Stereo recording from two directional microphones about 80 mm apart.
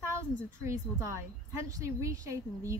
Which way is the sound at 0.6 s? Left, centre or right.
Right.